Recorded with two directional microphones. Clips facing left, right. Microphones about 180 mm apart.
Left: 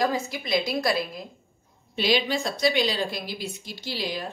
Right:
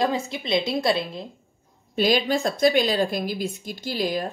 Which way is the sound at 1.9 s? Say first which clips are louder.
Right 3 dB; 45° right (ahead or behind).